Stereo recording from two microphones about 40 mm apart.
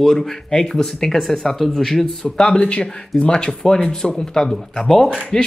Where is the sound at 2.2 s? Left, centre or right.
Left.